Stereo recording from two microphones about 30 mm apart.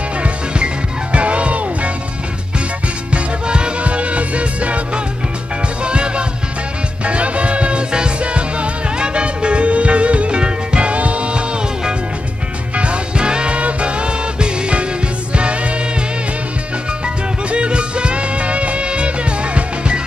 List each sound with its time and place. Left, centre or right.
0.2 s music: right
3.1 s music: right
3.8 s music: right
5.9 s music: right
11.0 s music: right
12.7 s music: right
13.6 s music: right
17.0 s music: right